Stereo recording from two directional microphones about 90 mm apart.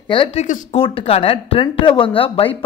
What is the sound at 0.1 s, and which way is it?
Speech, 70° left (ahead or behind).